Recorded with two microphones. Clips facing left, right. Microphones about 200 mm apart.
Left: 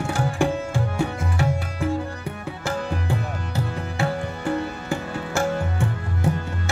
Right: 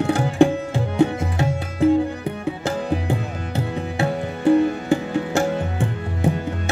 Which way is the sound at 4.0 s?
20° right (ahead or behind).